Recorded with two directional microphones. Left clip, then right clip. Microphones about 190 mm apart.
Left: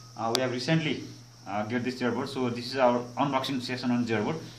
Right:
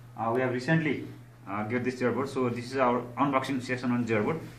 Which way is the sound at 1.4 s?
45° left (ahead or behind).